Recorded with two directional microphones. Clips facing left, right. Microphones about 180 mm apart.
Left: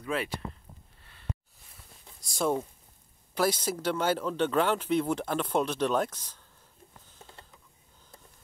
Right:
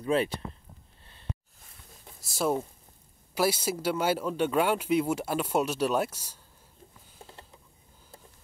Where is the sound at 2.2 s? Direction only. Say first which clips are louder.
Even; 5° right (ahead or behind).